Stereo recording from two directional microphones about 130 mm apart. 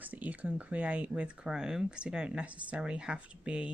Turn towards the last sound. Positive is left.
turn(degrees=-10)  # may be behind; listen again after turning